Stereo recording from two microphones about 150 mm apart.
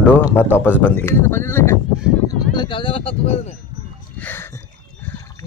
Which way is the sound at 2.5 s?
30° left (ahead or behind).